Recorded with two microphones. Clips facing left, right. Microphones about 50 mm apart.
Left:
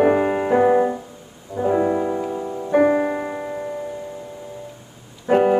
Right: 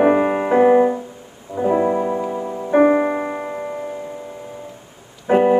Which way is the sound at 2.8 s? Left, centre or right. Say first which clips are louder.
Right 3 dB; right.